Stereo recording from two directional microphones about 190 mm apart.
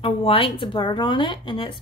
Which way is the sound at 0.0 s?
30° left (ahead or behind).